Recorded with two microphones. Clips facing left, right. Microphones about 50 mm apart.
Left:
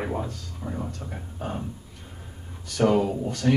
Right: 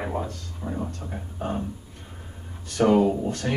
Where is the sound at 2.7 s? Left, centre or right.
Centre.